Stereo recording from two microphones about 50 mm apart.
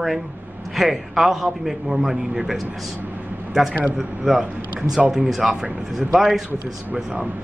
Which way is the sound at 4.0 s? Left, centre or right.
Centre.